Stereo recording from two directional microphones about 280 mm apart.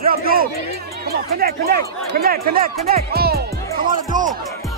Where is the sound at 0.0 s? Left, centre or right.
Right.